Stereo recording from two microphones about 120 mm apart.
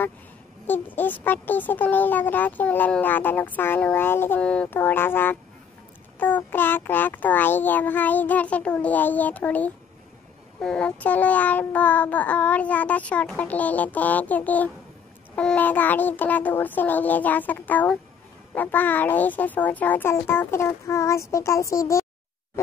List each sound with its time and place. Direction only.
0.7 s a child's voice: 15° left (ahead or behind)